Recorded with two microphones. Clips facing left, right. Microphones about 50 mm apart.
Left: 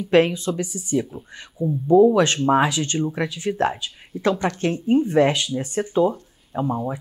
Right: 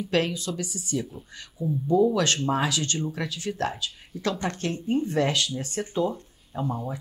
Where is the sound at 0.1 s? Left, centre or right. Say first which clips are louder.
Left 9 dB; left.